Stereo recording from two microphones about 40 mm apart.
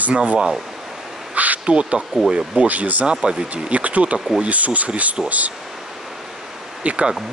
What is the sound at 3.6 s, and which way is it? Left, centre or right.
Speech, right.